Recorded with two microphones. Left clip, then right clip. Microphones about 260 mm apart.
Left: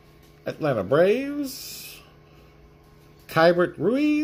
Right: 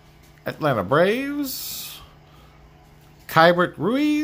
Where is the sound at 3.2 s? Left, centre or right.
Centre.